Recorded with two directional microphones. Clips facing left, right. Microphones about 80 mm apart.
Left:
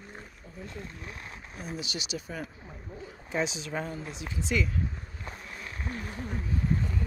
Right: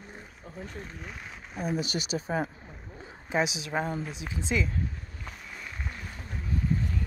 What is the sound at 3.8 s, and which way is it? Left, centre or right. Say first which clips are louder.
Speech: right 4 dB; right.